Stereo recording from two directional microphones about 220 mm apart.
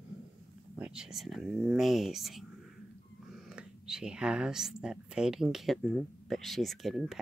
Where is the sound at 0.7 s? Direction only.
5° right (ahead or behind).